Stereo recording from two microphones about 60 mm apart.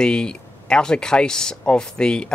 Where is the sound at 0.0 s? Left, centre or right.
Centre.